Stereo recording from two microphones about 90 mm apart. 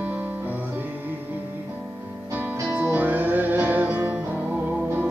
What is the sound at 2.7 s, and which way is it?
Music, 15° right (ahead or behind).